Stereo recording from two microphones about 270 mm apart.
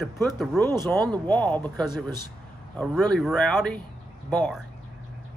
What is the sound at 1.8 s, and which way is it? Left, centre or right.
Speech, centre.